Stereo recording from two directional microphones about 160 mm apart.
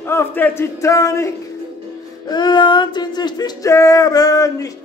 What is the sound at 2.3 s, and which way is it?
Music, 25° left (ahead or behind).